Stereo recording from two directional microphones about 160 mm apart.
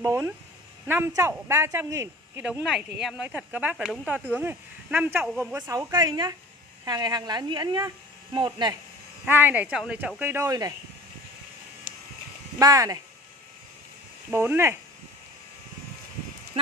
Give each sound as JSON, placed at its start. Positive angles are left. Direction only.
{"t": 0.0, "sound": "a woman's voice", "side_deg": -15}
{"t": 9.2, "sound": "speech", "side_deg": -10}
{"t": 12.5, "sound": "a woman's voice", "side_deg": -20}
{"t": 14.3, "sound": "speech", "side_deg": -15}